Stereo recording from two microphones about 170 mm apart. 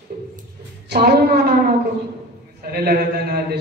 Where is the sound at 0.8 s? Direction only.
70° right (ahead or behind).